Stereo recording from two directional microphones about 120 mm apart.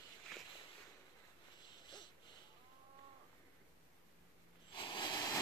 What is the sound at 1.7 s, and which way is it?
Wheeze, 40° left (ahead or behind).